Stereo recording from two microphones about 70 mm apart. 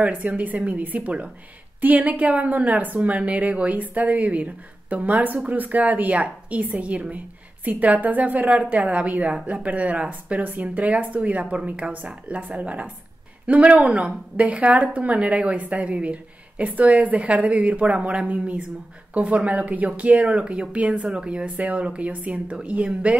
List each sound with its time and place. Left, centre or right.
0.0 s a woman's voice: right